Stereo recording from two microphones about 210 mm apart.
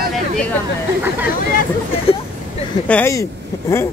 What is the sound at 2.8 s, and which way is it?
Speech, 10° left (ahead or behind).